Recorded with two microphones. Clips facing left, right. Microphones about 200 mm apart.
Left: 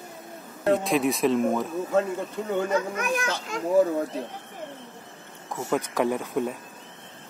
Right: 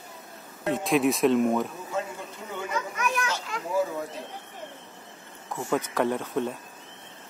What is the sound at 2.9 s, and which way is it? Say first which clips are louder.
Speech: left 2 dB; 50° left (ahead or behind).